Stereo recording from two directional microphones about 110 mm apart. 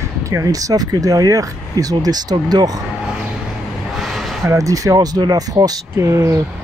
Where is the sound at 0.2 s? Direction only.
30° right (ahead or behind).